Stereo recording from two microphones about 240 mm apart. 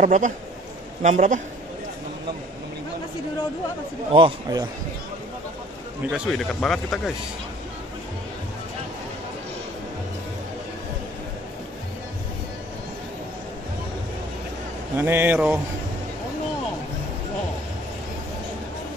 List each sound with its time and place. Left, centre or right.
0.0 s a man's voice: right
4.1 s a man's voice: centre
6.0 s speech: centre
15.0 s speech: centre